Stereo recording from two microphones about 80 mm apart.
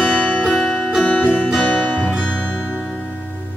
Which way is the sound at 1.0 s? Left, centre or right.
Centre.